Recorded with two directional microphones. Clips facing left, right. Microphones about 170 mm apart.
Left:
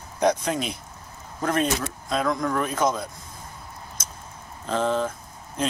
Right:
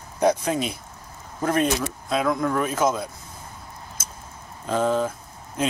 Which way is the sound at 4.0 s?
5° right (ahead or behind).